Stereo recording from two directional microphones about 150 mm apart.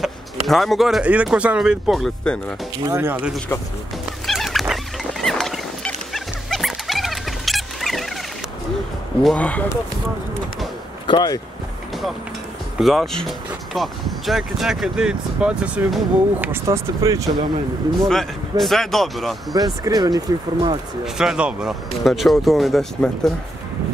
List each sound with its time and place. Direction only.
0.0 s speech: centre (ahead or behind)
2.8 s speech: 20° right (ahead or behind)
4.3 s dog: centre (ahead or behind)
5.2 s rodents: centre (ahead or behind)
6.1 s dog: centre (ahead or behind)
9.2 s speech: 5° left (ahead or behind)
11.1 s speech: 25° left (ahead or behind)
12.7 s speech: centre (ahead or behind); by 17.4 s 20° right (ahead or behind)
18.0 s speech: centre (ahead or behind)
19.5 s speech: 25° right (ahead or behind)
21.0 s speech: 5° right (ahead or behind)